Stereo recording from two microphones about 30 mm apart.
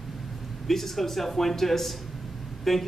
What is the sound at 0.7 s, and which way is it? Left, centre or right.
A man's voice, centre.